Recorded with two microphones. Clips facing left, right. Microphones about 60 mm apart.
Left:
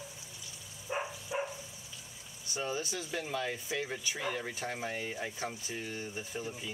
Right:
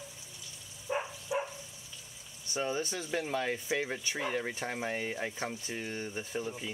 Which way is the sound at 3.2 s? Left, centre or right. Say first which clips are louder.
Right 3 dB; centre.